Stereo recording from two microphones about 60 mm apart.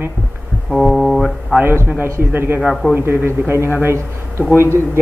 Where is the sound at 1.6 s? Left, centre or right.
Right.